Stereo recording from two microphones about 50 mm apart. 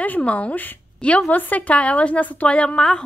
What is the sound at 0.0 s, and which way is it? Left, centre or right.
A woman's voice, left.